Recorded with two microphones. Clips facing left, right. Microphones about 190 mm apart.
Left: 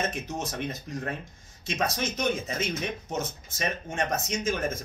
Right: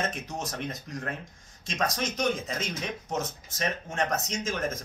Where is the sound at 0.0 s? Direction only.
Centre (ahead or behind).